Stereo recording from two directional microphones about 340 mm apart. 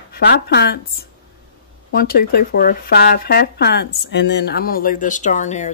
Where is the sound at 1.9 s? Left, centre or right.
Left.